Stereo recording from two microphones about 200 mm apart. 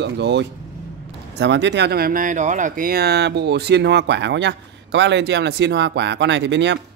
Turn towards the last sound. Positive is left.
turn(degrees=-60)  # may be behind; listen again after turning